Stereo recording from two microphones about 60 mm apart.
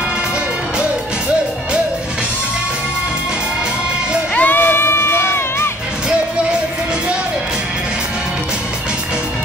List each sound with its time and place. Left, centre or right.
4.4 s crowd: left